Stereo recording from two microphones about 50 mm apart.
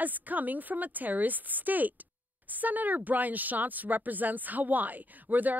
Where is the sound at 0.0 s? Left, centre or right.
Right.